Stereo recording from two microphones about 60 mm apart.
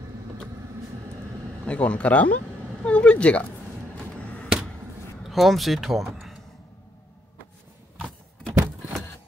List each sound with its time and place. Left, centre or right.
1.7 s speech: left
3.9 s arrow: centre
5.2 s speech: centre